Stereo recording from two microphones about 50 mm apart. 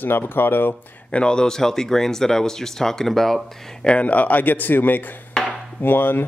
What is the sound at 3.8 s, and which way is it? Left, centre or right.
Speech, left.